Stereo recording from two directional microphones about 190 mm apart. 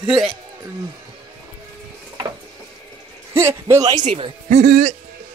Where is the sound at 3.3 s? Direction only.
15° right (ahead or behind).